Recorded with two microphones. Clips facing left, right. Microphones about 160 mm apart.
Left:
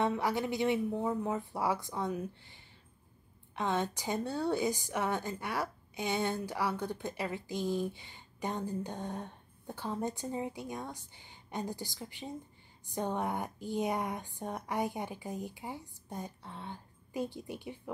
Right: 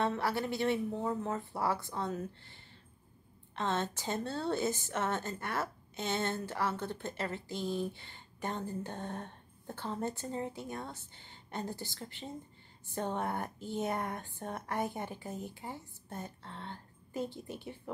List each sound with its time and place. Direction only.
0.0 s a woman's voice: 15° left (ahead or behind)